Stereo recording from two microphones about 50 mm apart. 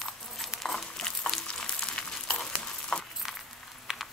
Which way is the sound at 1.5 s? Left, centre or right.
Left.